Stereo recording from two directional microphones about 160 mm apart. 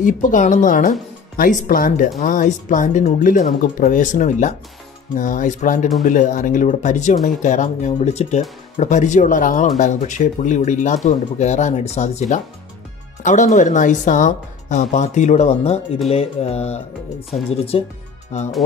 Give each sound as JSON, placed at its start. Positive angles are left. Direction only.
{"t": 0.0, "sound": "speech", "side_deg": 55}
{"t": 16.1, "sound": "mantra", "side_deg": 40}
{"t": 18.3, "sound": "speech", "side_deg": 45}